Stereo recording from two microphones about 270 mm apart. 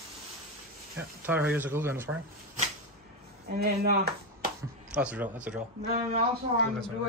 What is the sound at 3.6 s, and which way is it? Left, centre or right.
Speech, right.